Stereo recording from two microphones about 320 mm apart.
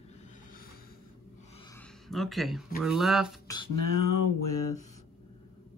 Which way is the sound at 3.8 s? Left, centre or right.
Left.